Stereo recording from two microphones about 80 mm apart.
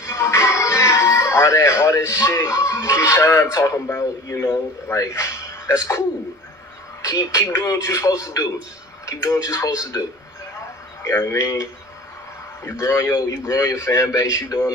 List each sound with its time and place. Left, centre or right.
0.0 s music: left
3.9 s a man's voice: left
11.1 s a man's voice: left